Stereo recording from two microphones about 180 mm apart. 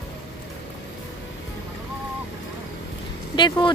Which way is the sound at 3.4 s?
25° left (ahead or behind).